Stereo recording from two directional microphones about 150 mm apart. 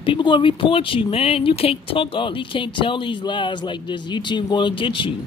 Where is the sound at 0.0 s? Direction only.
35° left (ahead or behind).